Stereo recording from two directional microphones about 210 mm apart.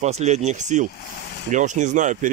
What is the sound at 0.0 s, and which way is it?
Speech, 30° right (ahead or behind).